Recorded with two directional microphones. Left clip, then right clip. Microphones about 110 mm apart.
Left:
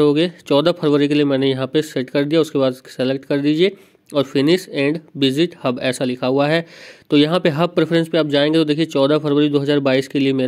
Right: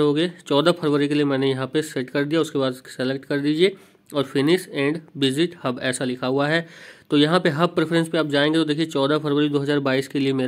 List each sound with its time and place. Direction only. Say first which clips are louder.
0.0 s speech: left 5 dB; 30° left (ahead or behind)